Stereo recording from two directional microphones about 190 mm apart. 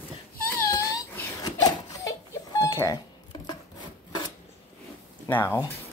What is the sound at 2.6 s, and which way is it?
Wail, 15° left (ahead or behind).